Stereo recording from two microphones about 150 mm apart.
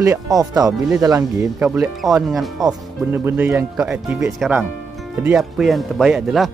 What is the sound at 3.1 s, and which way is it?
Speech, 15° right (ahead or behind).